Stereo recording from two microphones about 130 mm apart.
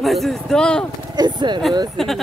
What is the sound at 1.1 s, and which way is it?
Speech, 35° right (ahead or behind).